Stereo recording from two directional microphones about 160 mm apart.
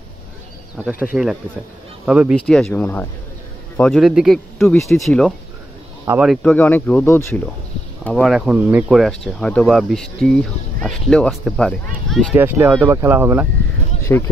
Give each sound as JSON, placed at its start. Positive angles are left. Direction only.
{"t": 0.8, "sound": "speech", "side_deg": -10}
{"t": 2.3, "sound": "speech", "side_deg": 5}
{"t": 6.5, "sound": "speech", "side_deg": 10}
{"t": 8.0, "sound": "speech", "side_deg": 0}
{"t": 12.3, "sound": "speech", "side_deg": -15}
{"t": 14.0, "sound": "speech", "side_deg": 15}